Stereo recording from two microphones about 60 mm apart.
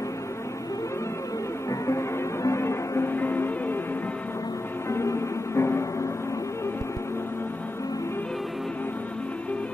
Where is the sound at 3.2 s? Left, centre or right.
Left.